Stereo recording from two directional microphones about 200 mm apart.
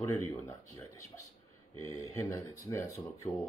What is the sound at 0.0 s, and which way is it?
Speech, 15° left (ahead or behind).